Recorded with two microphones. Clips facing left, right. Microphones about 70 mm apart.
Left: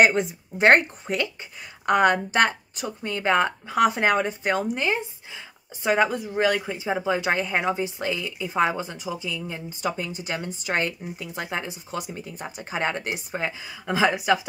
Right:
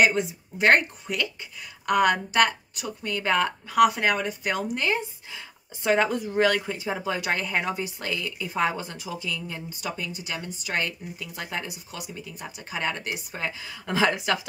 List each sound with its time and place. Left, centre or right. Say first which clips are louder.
0.0 s a woman's voice: left 3 dB; left; by 7.0 s centre
7.0 s speech: left 6 dB; left
9.8 s speech: left 6 dB; left
13.8 s a woman's voice: left 3 dB; centre